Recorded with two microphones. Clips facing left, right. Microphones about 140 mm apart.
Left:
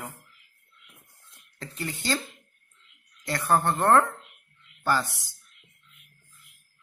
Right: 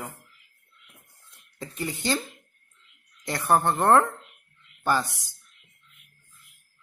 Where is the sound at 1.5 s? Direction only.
15° right (ahead or behind).